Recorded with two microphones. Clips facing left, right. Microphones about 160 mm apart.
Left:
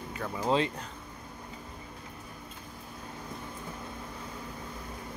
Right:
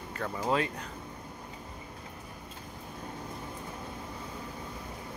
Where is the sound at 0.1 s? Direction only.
5° left (ahead or behind).